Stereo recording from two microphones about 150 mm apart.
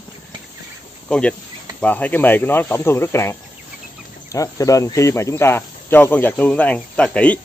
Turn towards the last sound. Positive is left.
turn(degrees=10)  # may be behind; listen again after turning